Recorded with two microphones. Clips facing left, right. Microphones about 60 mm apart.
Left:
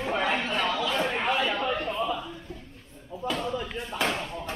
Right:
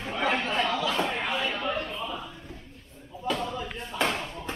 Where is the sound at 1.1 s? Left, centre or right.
Left.